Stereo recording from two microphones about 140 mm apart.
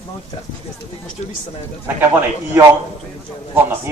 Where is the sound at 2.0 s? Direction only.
15° right (ahead or behind).